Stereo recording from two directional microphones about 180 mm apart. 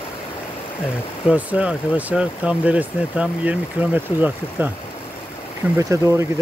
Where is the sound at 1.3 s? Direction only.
10° right (ahead or behind).